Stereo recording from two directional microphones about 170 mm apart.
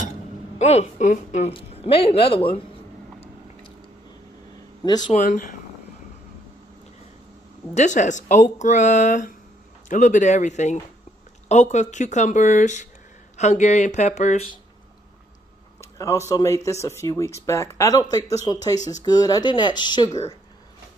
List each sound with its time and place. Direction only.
0.1 s a sound: 40° left (ahead or behind)
1.5 s a man's voice: 35° left (ahead or behind)
4.8 s speech: 25° left (ahead or behind)
5.1 s speech: 50° left (ahead or behind)
7.7 s speech: 45° left (ahead or behind)
15.8 s speech: 20° left (ahead or behind)